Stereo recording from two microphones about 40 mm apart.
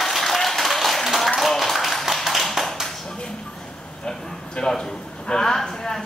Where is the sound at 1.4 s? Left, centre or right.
Centre.